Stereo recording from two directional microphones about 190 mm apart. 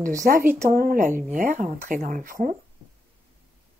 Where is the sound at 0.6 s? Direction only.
50° right (ahead or behind).